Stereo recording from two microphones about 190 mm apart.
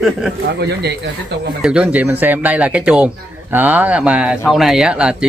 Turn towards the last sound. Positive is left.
turn(degrees=-5)  # may be behind; listen again after turning